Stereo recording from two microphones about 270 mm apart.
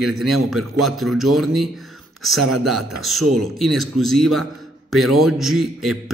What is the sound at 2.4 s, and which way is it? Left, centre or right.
Speech, right.